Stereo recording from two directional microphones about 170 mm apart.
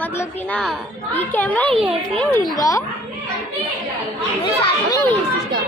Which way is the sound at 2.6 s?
20° left (ahead or behind).